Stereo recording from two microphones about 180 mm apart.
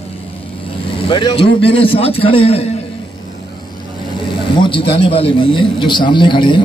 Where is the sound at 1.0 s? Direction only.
30° left (ahead or behind).